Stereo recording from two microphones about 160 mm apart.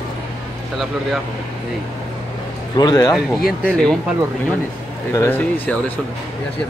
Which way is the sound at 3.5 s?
5° left (ahead or behind).